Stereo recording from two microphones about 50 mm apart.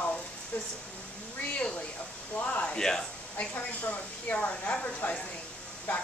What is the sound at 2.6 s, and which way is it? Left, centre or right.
Speech, centre.